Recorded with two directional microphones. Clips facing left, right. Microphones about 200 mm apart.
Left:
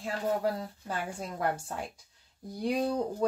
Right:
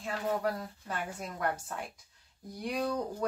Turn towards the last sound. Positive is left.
turn(degrees=30)  # may be behind; listen again after turning